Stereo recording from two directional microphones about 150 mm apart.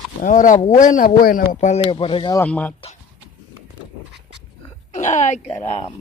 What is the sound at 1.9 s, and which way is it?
Speech, 35° left (ahead or behind).